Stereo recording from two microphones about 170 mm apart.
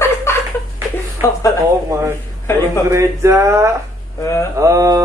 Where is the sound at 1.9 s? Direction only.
15° right (ahead or behind).